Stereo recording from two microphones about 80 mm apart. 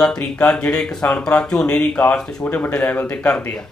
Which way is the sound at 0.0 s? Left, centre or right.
Centre.